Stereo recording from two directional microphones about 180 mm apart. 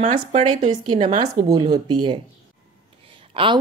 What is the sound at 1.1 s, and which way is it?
Speech, 25° right (ahead or behind).